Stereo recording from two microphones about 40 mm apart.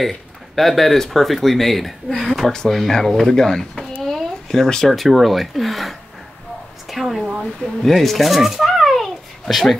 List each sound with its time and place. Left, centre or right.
0.6 s a child's voice: centre